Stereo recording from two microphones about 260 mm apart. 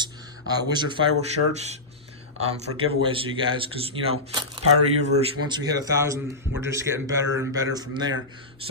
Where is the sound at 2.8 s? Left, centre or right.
Centre.